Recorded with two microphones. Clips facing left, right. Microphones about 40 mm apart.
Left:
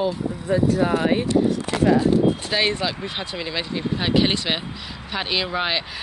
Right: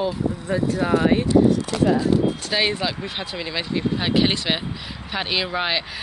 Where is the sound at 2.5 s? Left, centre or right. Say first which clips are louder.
Even; centre.